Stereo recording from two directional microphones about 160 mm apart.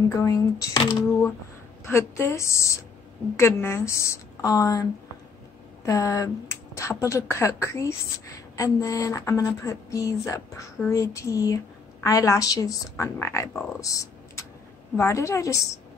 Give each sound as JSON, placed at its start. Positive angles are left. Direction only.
{"t": 0.2, "sound": "a woman's voice", "side_deg": 20}
{"t": 5.9, "sound": "speech", "side_deg": 20}
{"t": 13.7, "sound": "typing", "side_deg": 20}
{"t": 15.0, "sound": "speech", "side_deg": 20}